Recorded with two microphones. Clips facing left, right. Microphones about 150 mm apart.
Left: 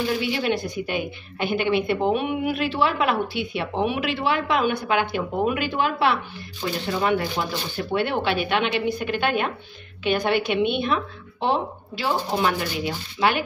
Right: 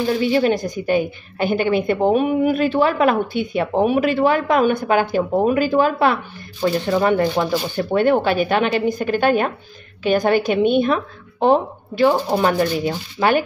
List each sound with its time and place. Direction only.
0.1 s a woman's voice: 40° right (ahead or behind)